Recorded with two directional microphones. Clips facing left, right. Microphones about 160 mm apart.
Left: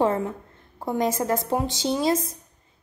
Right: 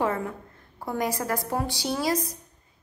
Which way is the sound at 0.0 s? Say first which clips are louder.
Left 4 dB; 30° left (ahead or behind).